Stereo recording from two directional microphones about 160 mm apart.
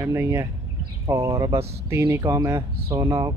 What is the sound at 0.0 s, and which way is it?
Speech, 15° right (ahead or behind).